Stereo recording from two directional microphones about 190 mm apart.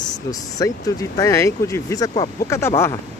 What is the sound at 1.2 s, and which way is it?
Speech, 15° left (ahead or behind).